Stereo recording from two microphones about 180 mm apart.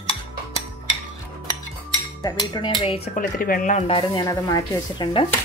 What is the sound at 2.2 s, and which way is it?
Speech, 25° left (ahead or behind).